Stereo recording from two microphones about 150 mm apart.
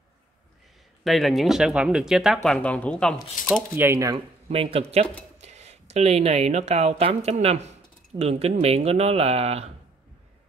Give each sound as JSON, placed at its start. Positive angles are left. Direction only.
{"t": 1.0, "sound": "speech", "side_deg": 0}
{"t": 3.7, "sound": "speech", "side_deg": -15}
{"t": 4.5, "sound": "speech", "side_deg": -40}